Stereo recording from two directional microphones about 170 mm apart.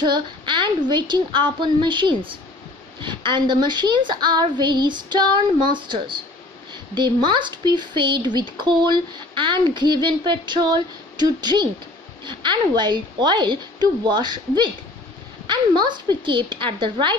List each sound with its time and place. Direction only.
0.0 s speech: 30° right (ahead or behind)